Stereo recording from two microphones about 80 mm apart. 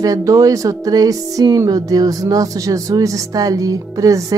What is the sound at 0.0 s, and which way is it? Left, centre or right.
Speech, right.